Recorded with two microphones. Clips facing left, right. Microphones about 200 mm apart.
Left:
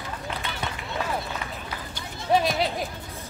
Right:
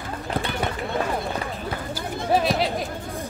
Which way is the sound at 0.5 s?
55° right (ahead or behind).